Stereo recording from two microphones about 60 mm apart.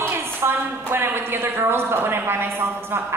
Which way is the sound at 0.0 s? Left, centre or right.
Right.